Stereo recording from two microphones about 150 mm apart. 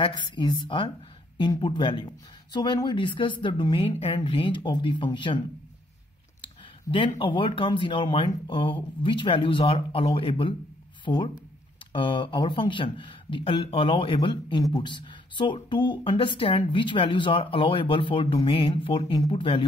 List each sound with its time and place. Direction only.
0.0 s speech: 35° left (ahead or behind)
6.4 s a sound: 35° left (ahead or behind)
7.2 s speech: 35° left (ahead or behind)